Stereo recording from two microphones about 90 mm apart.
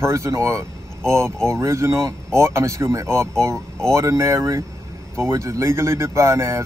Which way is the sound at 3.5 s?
5° left (ahead or behind).